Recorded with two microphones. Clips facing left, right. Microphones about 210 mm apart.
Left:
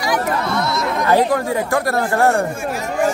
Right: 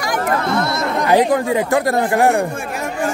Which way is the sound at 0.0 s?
50° right (ahead or behind).